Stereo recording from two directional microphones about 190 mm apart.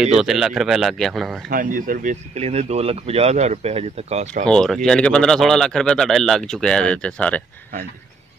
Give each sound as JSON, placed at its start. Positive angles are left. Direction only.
{"t": 0.2, "sound": "a man's voice", "side_deg": 0}
{"t": 1.5, "sound": "speech", "side_deg": -45}
{"t": 2.3, "sound": "speech", "side_deg": -35}
{"t": 4.5, "sound": "a man's voice", "side_deg": 5}